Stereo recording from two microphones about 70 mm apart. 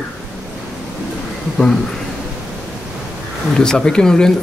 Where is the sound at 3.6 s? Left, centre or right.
Centre.